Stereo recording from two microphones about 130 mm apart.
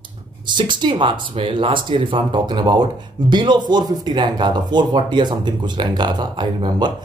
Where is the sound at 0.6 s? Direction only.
40° right (ahead or behind).